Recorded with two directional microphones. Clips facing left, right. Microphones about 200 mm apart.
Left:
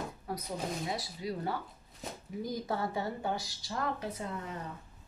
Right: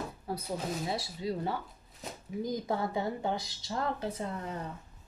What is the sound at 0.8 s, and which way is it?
Speech, 30° right (ahead or behind).